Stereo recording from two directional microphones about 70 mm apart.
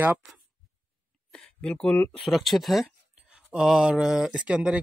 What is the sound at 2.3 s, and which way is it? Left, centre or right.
Speech, centre.